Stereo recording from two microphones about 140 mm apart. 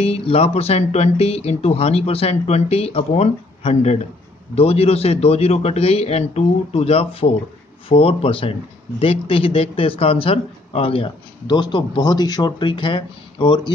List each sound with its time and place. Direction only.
0.0 s speech: 45° left (ahead or behind)